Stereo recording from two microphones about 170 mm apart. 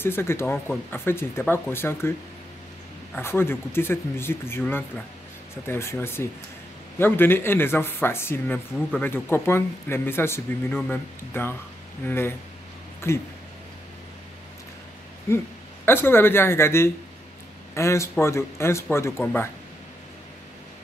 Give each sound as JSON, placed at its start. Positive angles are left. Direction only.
{"t": 0.0, "sound": "speech", "side_deg": 15}
{"t": 3.2, "sound": "speech", "side_deg": 15}
{"t": 15.2, "sound": "speech", "side_deg": 15}